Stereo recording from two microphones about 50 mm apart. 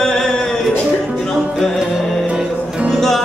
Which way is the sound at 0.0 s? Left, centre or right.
Centre.